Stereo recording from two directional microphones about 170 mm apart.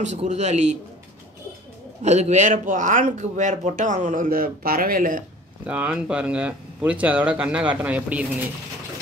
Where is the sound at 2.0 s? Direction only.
40° right (ahead or behind).